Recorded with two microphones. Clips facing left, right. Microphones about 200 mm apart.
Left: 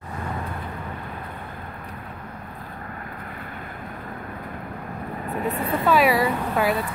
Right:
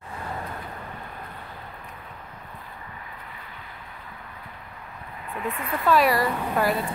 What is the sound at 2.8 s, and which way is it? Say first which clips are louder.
Vehicle: left 6 dB; 55° left (ahead or behind).